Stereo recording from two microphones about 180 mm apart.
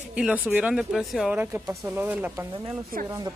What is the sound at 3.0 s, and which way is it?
Speech, 20° right (ahead or behind).